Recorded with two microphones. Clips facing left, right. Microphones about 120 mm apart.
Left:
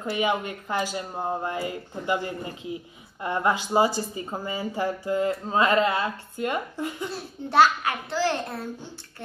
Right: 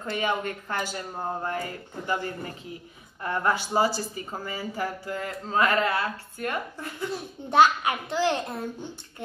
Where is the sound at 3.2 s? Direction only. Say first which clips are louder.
Left 2 dB; 20° left (ahead or behind).